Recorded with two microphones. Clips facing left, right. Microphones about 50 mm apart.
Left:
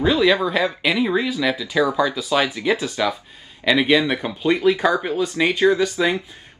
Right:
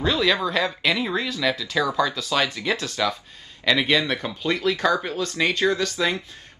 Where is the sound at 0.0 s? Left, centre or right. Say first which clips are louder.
Left 4 dB; centre.